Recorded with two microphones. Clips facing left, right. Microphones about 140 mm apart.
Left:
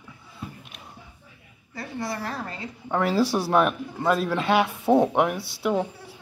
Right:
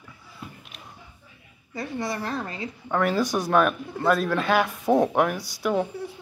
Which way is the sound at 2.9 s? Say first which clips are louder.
Left 1 dB; 25° left (ahead or behind).